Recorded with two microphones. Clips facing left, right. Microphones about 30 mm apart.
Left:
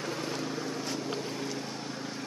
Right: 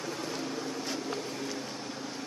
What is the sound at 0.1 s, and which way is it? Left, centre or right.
Vehicle, centre.